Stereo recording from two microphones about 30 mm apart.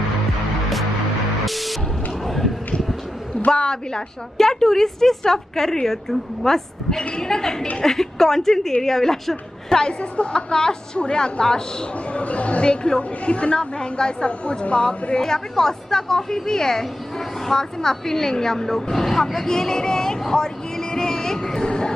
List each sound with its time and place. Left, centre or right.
1.4 s music: centre
2.2 s a sound: centre
3.5 s a woman's voice: left
10.3 s a woman's voice: left
12.1 s speech: left
12.6 s a woman's voice: left
13.2 s a woman's voice: left
13.6 s a woman's voice: left
15.1 s a woman's voice: centre
19.5 s a woman's voice: left